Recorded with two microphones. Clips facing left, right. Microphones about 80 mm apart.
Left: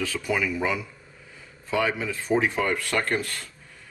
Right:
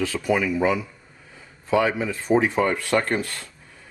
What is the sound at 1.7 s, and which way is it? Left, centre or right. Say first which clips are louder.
Speech: right 4 dB; centre.